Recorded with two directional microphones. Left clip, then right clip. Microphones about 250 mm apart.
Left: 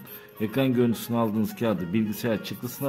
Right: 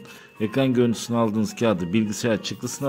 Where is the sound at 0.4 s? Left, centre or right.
Centre.